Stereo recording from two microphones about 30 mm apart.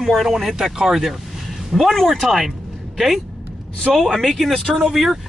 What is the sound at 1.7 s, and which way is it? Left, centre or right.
Speech, centre.